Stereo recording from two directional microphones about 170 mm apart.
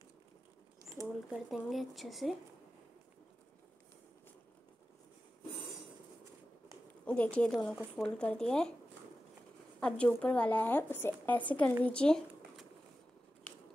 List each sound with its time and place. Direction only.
1.0 s a sound: 20° right (ahead or behind)
1.7 s speech: centre (ahead or behind)
7.1 s speech: 5° left (ahead or behind)
7.7 s speech: 10° right (ahead or behind)
8.0 s speech: 5° left (ahead or behind)
9.8 s speech: 5° left (ahead or behind)